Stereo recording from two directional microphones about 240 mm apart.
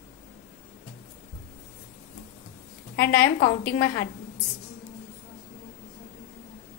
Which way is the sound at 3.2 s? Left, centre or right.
Left.